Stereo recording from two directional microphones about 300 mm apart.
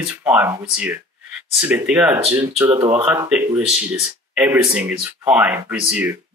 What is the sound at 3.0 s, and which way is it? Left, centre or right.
Speech, centre.